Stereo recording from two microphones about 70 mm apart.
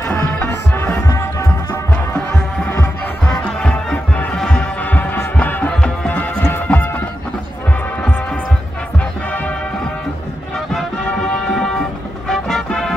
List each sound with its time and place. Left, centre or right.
1.0 s music: left
3.3 s music: centre
4.8 s music: left
6.5 s music: left
12.3 s music: centre